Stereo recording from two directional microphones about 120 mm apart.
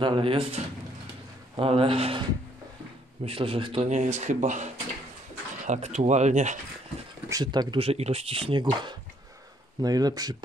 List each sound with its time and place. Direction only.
0.0 s speech: 45° right (ahead or behind)
1.6 s speech: 50° right (ahead or behind)
3.3 s speech: 50° right (ahead or behind); by 4.6 s 90° right
5.7 s speech: 70° right (ahead or behind)
7.2 s speech: 30° right (ahead or behind)
7.7 s speech: 55° right (ahead or behind); by 10.3 s 30° right (ahead or behind)